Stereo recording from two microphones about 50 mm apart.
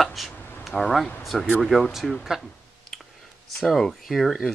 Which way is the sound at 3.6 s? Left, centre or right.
Left.